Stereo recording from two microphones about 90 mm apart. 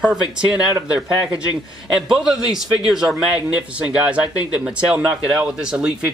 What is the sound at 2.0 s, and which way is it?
A man's voice, 5° right (ahead or behind).